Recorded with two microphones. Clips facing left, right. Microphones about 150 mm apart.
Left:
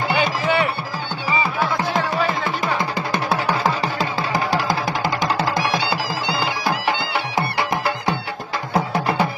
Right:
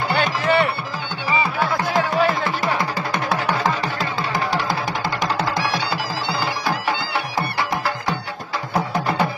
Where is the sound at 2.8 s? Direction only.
25° left (ahead or behind).